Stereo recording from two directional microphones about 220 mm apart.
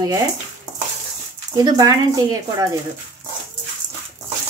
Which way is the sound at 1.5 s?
15° right (ahead or behind).